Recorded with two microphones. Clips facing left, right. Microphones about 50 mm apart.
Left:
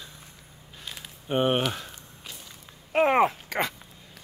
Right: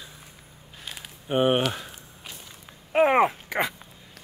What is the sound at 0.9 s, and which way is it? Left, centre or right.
Walk, centre.